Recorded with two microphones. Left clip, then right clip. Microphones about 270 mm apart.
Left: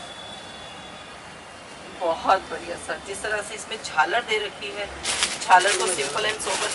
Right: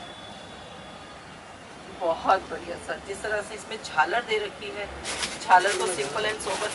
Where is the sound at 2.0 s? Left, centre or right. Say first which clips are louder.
Left 2 dB; right.